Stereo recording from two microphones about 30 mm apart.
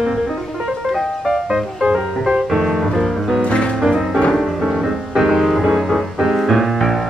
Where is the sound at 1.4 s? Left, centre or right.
Right.